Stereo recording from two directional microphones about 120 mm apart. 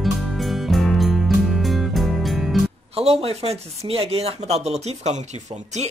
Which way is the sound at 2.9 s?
55° right (ahead or behind).